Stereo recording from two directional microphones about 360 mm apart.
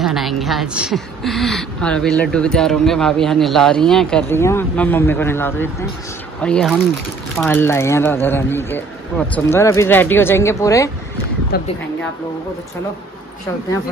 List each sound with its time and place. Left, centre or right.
0.0 s a woman's voice: centre
11.5 s speech: left